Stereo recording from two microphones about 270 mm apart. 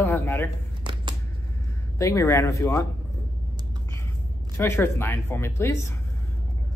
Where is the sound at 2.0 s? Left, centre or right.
Centre.